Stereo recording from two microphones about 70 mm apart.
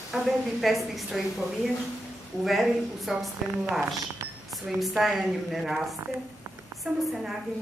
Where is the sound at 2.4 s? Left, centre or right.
Centre.